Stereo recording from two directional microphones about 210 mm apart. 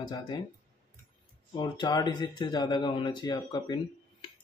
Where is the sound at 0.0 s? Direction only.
20° left (ahead or behind).